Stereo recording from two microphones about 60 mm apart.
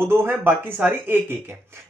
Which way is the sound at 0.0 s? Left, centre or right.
Right.